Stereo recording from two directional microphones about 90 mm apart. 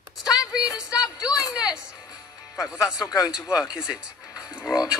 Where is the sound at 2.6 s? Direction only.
5° right (ahead or behind).